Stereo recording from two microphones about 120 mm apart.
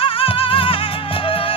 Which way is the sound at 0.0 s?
50° left (ahead or behind).